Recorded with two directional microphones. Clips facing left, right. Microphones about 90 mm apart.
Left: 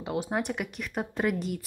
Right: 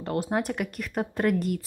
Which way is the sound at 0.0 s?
Centre (ahead or behind).